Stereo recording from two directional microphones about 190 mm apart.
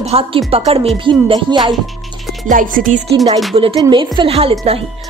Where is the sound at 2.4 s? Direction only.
45° right (ahead or behind).